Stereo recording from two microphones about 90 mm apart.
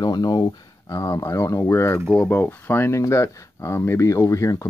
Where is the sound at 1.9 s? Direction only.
10° left (ahead or behind).